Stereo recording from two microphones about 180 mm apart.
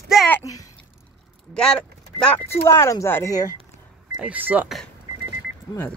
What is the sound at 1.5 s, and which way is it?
Speech, 5° left (ahead or behind).